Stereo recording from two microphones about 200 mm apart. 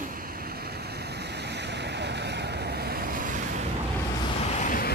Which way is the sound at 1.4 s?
60° right (ahead or behind).